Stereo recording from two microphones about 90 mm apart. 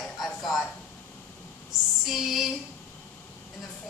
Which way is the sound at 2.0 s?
Centre (ahead or behind).